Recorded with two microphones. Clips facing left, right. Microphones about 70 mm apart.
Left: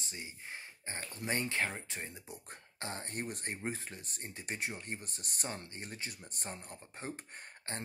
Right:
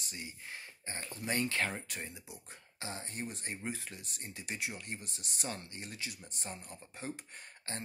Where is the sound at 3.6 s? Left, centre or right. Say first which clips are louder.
Left 1 dB; left.